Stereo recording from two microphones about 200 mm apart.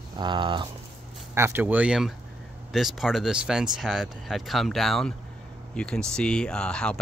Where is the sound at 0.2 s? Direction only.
25° right (ahead or behind).